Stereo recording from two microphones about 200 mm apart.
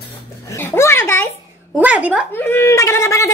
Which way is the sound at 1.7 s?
5° right (ahead or behind).